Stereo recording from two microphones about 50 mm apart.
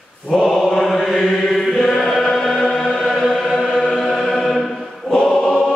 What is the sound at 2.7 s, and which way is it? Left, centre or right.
Choir, centre.